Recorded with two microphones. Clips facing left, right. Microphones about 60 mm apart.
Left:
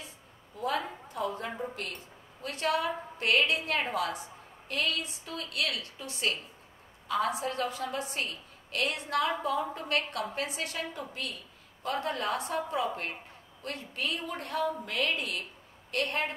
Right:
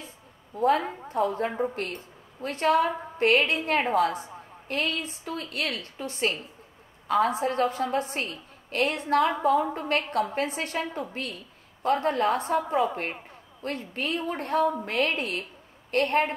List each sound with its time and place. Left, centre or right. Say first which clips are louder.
0.6 s a woman's voice: right 9 dB; right